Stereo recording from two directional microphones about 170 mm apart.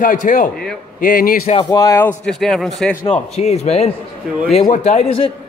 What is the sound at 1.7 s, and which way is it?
Speech, 20° left (ahead or behind).